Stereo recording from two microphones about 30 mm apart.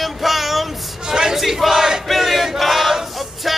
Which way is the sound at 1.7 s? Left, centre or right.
Centre.